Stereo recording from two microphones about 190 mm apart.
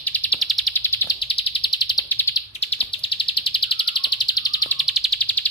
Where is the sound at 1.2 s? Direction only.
30° left (ahead or behind).